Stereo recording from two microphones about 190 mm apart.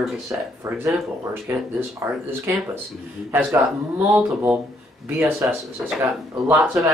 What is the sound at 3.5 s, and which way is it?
Speech, 10° right (ahead or behind).